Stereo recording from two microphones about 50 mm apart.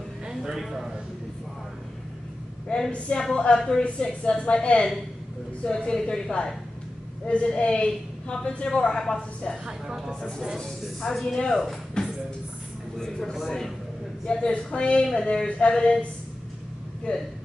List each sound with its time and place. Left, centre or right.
0.3 s speech: centre
2.7 s a woman's voice: left
9.7 s speech: centre
10.8 s speech: centre
12.0 s music: centre
12.9 s a woman's voice: centre
14.2 s a woman's voice: centre